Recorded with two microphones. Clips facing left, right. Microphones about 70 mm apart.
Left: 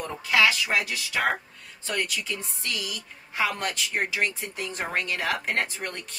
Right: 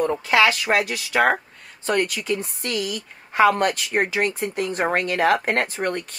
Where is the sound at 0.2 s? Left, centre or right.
Right.